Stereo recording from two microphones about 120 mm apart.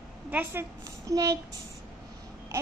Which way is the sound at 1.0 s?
30° right (ahead or behind).